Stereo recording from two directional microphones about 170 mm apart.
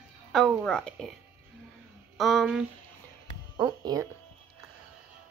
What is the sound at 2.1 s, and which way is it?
Speech, centre (ahead or behind).